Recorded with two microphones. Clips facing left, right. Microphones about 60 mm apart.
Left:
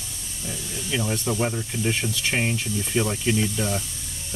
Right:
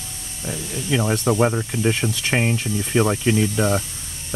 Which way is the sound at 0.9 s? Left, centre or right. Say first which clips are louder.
Right 6 dB; right.